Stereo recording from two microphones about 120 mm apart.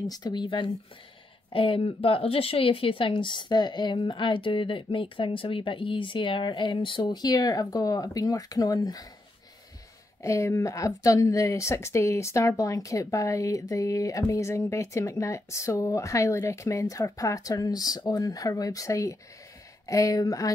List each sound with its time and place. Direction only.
0.0 s speech: 35° left (ahead or behind)
10.2 s a woman's voice: 25° left (ahead or behind)